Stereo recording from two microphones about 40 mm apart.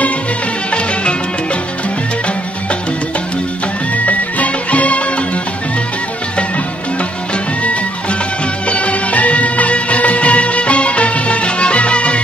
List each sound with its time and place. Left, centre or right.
3.9 s music: left
8.6 s music: left